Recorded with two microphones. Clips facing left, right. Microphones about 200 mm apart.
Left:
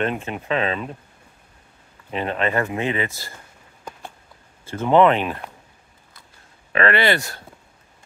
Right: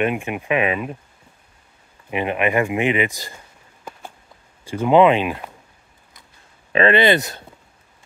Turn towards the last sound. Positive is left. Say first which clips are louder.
# right 4 dB
turn(degrees=-20)  # may be behind; listen again after turning